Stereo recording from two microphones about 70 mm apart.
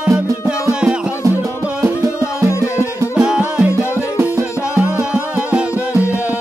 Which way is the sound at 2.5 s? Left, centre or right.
Left.